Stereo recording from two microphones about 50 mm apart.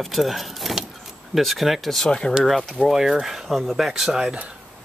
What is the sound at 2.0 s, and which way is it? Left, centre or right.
Speech, centre.